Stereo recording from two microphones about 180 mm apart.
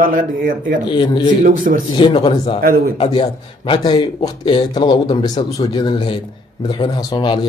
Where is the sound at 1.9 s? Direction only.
25° left (ahead or behind).